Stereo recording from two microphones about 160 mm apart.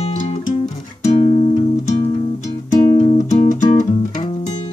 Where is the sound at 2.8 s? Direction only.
35° left (ahead or behind).